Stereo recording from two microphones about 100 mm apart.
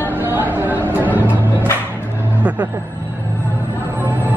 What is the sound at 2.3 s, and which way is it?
Vehicle, 15° right (ahead or behind).